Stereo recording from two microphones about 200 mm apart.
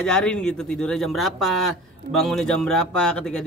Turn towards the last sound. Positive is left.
turn(degrees=5)  # may be behind; listen again after turning